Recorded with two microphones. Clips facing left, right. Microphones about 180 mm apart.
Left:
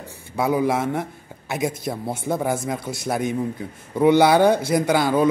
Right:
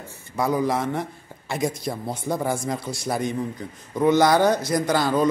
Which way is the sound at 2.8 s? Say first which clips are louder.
Left 1 dB; 25° left (ahead or behind).